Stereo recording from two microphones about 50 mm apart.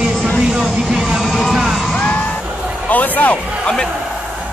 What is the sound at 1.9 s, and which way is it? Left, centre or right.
Music, left.